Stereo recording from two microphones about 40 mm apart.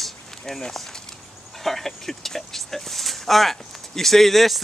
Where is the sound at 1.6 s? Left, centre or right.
Centre.